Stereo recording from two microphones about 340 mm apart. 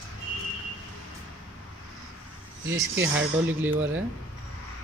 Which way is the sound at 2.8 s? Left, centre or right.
Centre.